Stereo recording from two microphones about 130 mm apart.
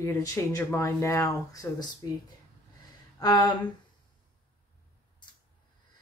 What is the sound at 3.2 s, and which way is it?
Speech, 30° left (ahead or behind).